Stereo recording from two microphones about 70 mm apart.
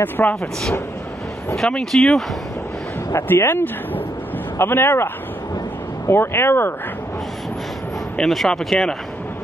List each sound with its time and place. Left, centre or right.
0.0 s speech: left
1.9 s speech: centre
3.1 s speech: left
8.2 s speech: centre